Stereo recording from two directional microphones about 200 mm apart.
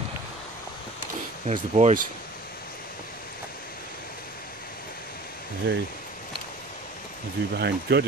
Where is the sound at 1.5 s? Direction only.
35° right (ahead or behind).